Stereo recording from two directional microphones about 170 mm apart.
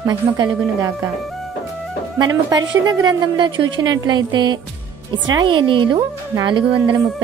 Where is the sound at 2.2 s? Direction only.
20° right (ahead or behind).